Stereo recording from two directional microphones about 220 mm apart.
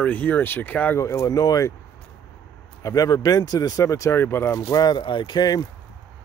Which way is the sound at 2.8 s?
15° left (ahead or behind).